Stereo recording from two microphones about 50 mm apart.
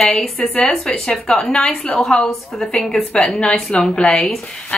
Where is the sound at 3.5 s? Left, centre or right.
Centre.